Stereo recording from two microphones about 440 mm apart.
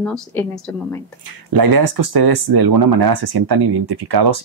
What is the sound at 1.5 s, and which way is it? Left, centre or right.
Speech, right.